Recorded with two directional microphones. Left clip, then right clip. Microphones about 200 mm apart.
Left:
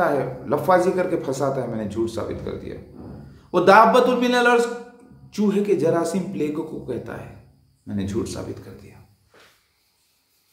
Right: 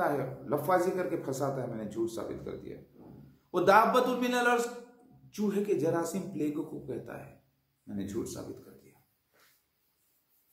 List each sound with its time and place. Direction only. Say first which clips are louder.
0.0 s speech: left 10 dB; 5° left (ahead or behind)
3.5 s speech: left 10 dB; centre (ahead or behind)